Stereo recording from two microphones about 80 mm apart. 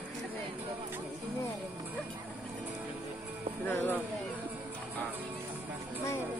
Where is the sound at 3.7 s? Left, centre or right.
Left.